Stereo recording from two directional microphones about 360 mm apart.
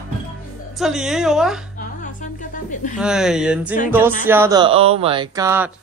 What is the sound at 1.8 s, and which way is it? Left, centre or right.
Music, left.